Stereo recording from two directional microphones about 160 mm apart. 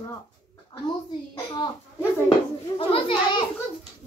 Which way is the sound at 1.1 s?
30° left (ahead or behind).